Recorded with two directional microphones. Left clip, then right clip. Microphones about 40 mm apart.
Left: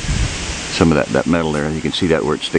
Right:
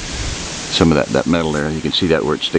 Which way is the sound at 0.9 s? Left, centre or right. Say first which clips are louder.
Even; centre.